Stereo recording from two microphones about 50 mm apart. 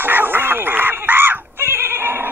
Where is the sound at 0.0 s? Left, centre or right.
Right.